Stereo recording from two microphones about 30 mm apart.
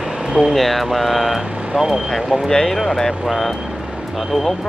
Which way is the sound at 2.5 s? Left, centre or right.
Left.